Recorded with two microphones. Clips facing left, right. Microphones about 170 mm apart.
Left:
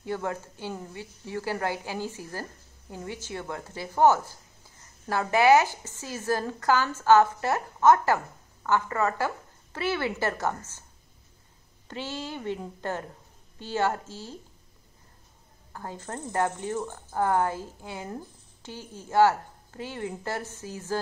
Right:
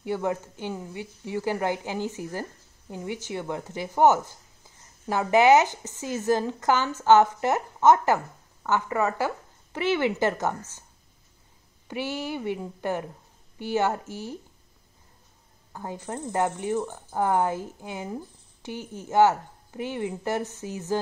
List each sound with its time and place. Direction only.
0.0 s a woman's voice: 15° right (ahead or behind)
11.9 s a woman's voice: 15° right (ahead or behind)
15.7 s a woman's voice: 15° right (ahead or behind)